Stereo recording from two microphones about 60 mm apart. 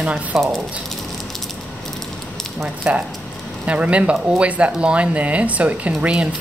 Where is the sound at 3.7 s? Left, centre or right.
Right.